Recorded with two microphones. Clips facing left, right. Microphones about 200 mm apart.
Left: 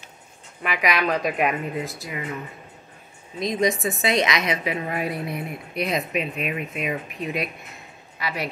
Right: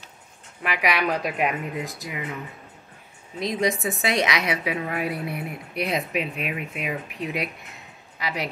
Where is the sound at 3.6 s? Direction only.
10° right (ahead or behind).